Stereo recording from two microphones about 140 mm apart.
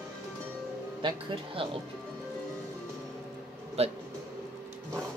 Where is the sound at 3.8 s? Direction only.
45° right (ahead or behind).